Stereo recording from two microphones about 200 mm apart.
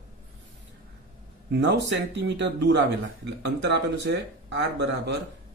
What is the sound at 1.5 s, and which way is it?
Speech, 60° right (ahead or behind).